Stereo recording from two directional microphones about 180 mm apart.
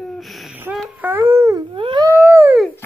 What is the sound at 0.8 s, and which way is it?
Babbling, 10° right (ahead or behind).